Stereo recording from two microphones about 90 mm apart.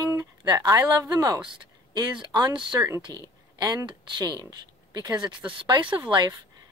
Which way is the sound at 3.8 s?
55° right (ahead or behind).